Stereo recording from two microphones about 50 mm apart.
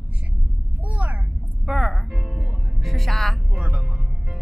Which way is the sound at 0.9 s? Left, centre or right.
Right.